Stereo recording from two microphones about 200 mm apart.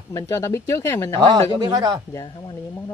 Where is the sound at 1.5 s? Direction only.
20° right (ahead or behind).